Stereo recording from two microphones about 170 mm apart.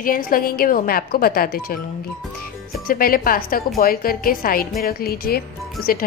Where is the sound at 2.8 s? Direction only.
60° left (ahead or behind).